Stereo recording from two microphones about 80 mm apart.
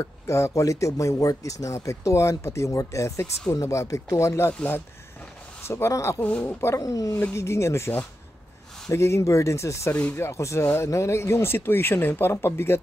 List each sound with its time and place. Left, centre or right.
0.0 s speech: left
5.7 s speech: left
8.9 s speech: left
9.9 s speech: left
10.2 s speech: left